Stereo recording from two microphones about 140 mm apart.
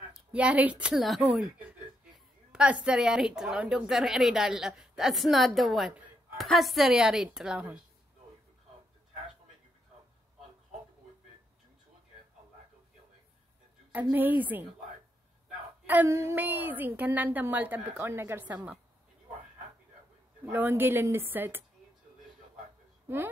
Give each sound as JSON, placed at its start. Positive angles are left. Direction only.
{"t": 0.1, "sound": "speech", "side_deg": -10}
{"t": 14.1, "sound": "a woman's voice", "side_deg": -15}
{"t": 15.9, "sound": "a woman's voice", "side_deg": -15}
{"t": 20.5, "sound": "a woman's voice", "side_deg": -15}
{"t": 23.0, "sound": "a woman's voice", "side_deg": -15}